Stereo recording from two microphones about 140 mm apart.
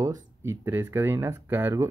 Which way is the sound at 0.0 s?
25° right (ahead or behind).